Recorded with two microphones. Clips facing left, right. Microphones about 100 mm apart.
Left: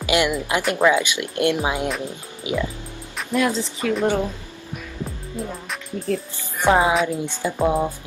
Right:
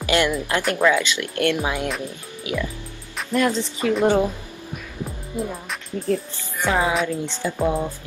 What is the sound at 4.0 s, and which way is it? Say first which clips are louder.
Speech: right 4 dB; 15° right (ahead or behind).